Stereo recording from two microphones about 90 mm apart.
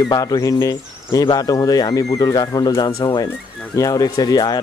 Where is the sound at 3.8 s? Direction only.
40° left (ahead or behind).